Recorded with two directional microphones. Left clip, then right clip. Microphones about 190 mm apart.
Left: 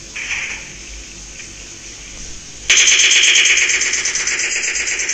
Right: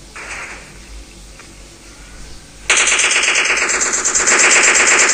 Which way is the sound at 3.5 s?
35° right (ahead or behind).